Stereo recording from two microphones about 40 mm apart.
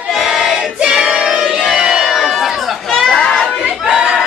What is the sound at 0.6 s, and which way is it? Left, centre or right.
Crowd, centre.